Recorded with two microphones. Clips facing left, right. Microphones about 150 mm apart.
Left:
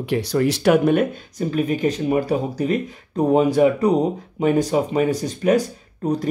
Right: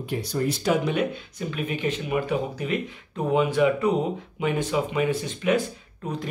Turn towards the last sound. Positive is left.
turn(degrees=40)  # may be behind; listen again after turning